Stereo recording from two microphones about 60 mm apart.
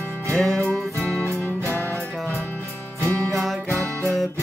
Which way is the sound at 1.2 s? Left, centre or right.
Left.